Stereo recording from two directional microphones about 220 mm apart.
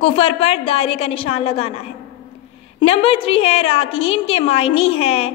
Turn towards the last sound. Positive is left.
turn(degrees=25)  # may be behind; listen again after turning